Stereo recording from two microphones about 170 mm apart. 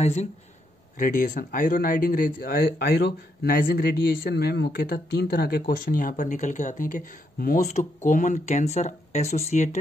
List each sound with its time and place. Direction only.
0.0 s speech: 40° left (ahead or behind)
0.9 s speech: 50° left (ahead or behind)
7.6 s speech: 45° left (ahead or behind)